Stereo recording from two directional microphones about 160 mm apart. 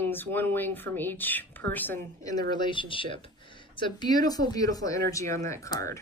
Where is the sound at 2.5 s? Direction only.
30° left (ahead or behind).